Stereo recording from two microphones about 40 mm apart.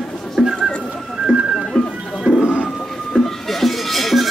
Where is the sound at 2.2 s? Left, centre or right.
Centre.